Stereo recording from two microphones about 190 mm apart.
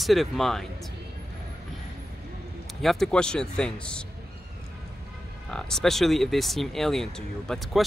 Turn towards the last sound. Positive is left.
turn(degrees=0)  # may be behind; listen again after turning